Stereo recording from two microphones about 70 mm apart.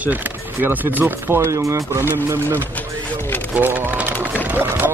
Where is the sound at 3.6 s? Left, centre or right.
Right.